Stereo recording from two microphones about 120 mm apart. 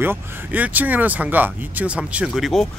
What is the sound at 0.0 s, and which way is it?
Speech, 15° right (ahead or behind).